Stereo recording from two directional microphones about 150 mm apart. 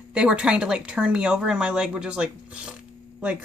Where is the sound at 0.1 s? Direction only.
5° right (ahead or behind).